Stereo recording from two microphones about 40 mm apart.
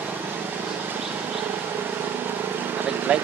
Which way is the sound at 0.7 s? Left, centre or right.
Right.